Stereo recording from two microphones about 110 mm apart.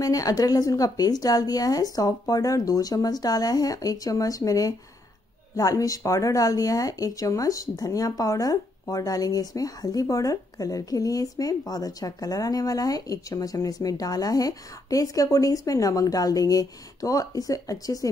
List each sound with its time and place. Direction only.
0.0 s speech: 30° left (ahead or behind)